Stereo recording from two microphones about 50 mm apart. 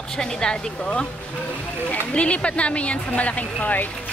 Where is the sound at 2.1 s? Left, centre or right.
Left.